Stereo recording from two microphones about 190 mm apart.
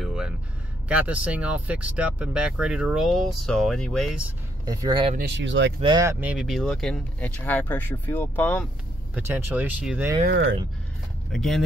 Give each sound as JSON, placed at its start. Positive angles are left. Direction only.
{"t": 0.0, "sound": "a sound", "side_deg": -5}
{"t": 0.8, "sound": "speech", "side_deg": -5}
{"t": 4.6, "sound": "speech", "side_deg": -20}
{"t": 5.1, "sound": "speech", "side_deg": -65}
{"t": 5.8, "sound": "speech", "side_deg": -20}
{"t": 6.2, "sound": "speech", "side_deg": 0}
{"t": 9.1, "sound": "speech", "side_deg": -10}
{"t": 11.3, "sound": "speech", "side_deg": 0}